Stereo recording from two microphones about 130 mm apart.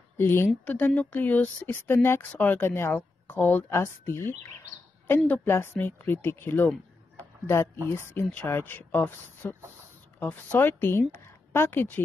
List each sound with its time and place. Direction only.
0.2 s speech: 20° left (ahead or behind)
6.7 s a sound: 15° left (ahead or behind)
7.9 s a woman's voice: 20° left (ahead or behind)